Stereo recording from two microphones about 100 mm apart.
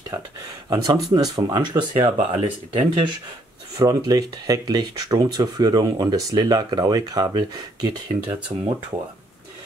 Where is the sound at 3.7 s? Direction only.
35° right (ahead or behind).